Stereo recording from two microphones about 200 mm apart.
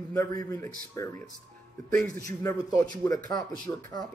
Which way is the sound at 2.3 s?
15° left (ahead or behind).